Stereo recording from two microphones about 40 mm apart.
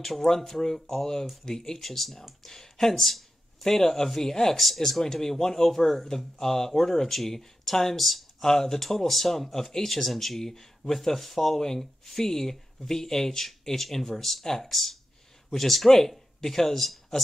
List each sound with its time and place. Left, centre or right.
0.0 s speech: centre